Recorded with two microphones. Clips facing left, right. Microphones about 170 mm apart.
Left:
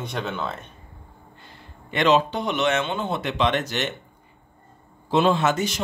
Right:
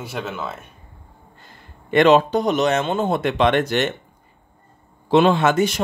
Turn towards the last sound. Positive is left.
turn(degrees=-55)  # may be behind; listen again after turning